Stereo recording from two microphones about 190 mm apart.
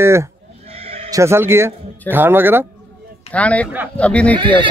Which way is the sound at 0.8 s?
30° right (ahead or behind).